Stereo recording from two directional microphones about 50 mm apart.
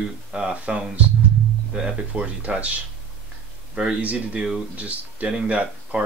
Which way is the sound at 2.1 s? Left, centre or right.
Right.